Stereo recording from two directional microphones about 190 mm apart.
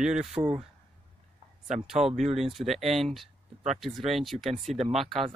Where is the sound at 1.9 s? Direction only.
Centre (ahead or behind).